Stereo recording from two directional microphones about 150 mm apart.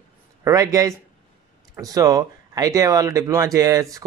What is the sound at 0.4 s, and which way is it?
Speech, 20° right (ahead or behind).